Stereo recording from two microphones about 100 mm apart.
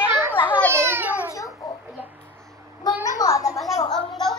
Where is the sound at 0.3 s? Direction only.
20° left (ahead or behind).